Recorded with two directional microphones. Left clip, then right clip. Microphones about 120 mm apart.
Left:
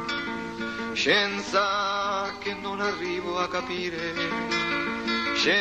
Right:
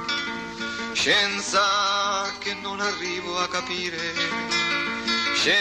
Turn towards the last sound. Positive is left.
turn(degrees=-30)  # may be behind; listen again after turning